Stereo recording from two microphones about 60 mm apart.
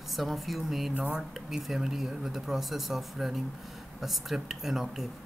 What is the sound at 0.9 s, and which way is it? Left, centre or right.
Speech, centre.